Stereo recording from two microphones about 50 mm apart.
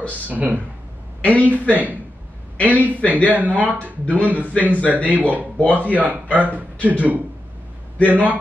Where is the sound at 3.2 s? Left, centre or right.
Right.